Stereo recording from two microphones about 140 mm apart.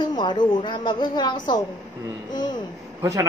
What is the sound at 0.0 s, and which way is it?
A woman's voice, 30° left (ahead or behind).